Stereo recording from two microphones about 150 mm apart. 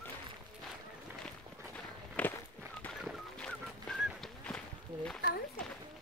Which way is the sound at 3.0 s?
Centre (ahead or behind).